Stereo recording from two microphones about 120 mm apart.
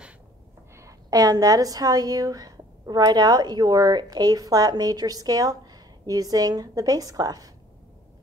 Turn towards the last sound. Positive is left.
turn(degrees=-30)  # may be behind; listen again after turning